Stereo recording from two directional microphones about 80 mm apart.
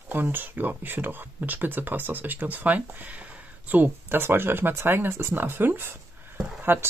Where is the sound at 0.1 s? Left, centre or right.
Right.